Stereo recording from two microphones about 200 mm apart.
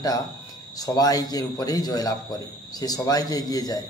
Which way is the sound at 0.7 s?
20° left (ahead or behind).